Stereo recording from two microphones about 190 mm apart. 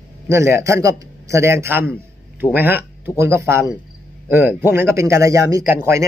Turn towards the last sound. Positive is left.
turn(degrees=-15)  # may be behind; listen again after turning